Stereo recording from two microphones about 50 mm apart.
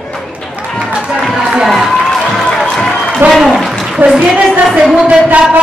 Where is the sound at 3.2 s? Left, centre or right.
Centre.